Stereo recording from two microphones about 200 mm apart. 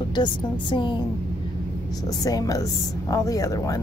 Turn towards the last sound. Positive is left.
turn(degrees=15)  # may be behind; listen again after turning